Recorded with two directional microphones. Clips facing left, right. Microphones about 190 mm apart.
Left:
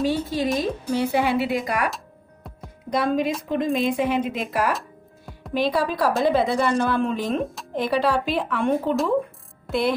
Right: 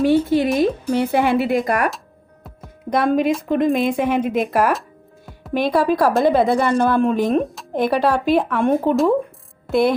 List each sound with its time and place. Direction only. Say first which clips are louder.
0.0 s speech: right 7 dB; 60° right (ahead or behind)
2.9 s speech: right 5 dB; 55° right (ahead or behind)
4.7 s music: right 1 dB; centre (ahead or behind)
5.5 s speech: right 5 dB; 50° right (ahead or behind)
9.7 s music: right 6 dB; 50° right (ahead or behind)